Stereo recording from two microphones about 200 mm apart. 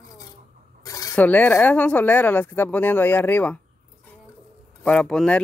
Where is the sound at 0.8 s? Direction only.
15° left (ahead or behind).